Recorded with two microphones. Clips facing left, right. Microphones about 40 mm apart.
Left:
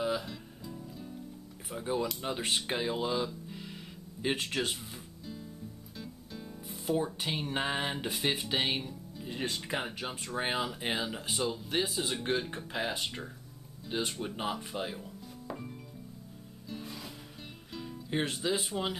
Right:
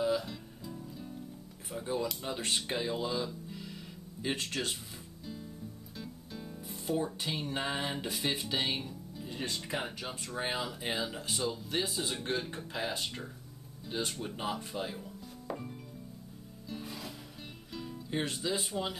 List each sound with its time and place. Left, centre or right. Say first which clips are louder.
0.0 s music: right 1 dB; centre
0.3 s music: even; centre
1.8 s speech: left 2 dB; centre
3.3 s music: even; centre
5.2 s music: right 1 dB; centre
7.2 s speech: left 2 dB; centre
15.4 s music: right 2 dB; centre
18.1 s speech: left 2 dB; centre